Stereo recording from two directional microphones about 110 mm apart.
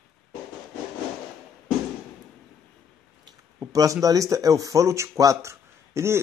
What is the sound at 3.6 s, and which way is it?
Speech, 30° right (ahead or behind).